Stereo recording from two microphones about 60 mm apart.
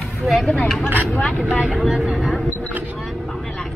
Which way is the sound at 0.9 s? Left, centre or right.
Left.